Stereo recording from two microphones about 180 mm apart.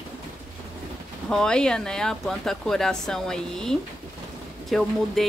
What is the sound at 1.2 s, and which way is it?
Speech, 5° left (ahead or behind).